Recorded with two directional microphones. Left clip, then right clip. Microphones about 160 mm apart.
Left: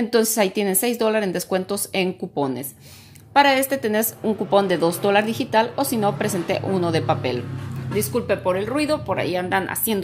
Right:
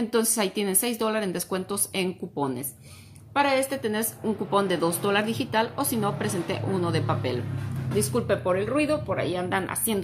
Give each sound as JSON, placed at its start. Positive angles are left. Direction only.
{"t": 0.1, "sound": "a woman's voice", "side_deg": 25}
{"t": 3.3, "sound": "a woman's voice", "side_deg": 40}
{"t": 4.5, "sound": "a woman's voice", "side_deg": 20}